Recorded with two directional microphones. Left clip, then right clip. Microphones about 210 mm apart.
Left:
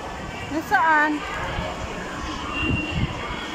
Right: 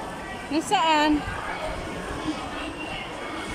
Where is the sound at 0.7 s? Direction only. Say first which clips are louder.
Left 3 dB; 15° right (ahead or behind).